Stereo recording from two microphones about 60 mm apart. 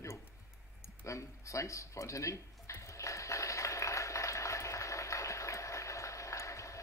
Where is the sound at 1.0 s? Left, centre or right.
Left.